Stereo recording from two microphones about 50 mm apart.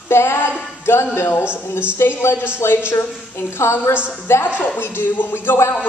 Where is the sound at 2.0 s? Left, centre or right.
Left.